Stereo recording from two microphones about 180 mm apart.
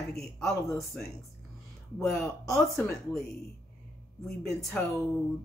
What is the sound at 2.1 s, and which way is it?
Speech, centre (ahead or behind).